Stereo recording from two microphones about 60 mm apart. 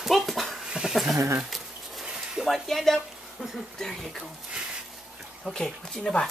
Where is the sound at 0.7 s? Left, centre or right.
Centre.